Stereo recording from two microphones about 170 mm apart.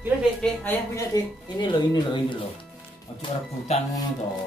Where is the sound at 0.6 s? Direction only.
20° left (ahead or behind).